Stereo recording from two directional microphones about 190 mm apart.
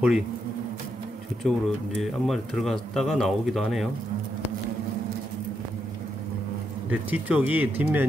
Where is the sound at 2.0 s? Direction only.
Centre (ahead or behind).